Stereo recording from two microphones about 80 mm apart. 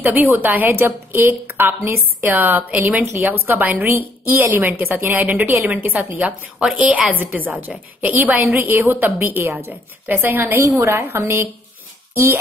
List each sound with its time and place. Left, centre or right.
0.0 s a woman's voice: right